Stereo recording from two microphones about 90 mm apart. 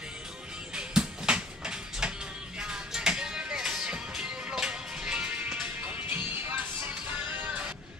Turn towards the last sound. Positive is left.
turn(degrees=-15)  # may be behind; listen again after turning